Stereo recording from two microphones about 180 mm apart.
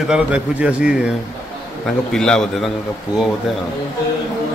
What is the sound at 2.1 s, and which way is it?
Speech, 5° left (ahead or behind).